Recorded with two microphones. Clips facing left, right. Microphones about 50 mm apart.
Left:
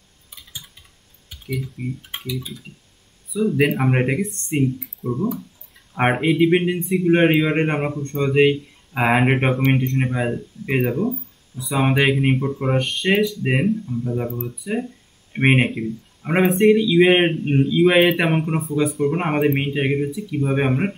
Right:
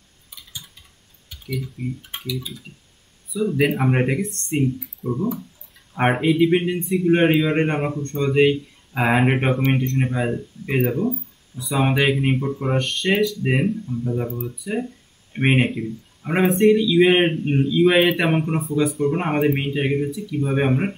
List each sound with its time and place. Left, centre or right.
1.3 s speech: centre
3.6 s speech: centre
17.3 s a man's voice: centre